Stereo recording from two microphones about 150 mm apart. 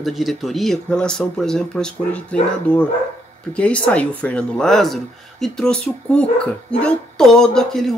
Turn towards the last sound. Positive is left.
turn(degrees=0)  # may be behind; listen again after turning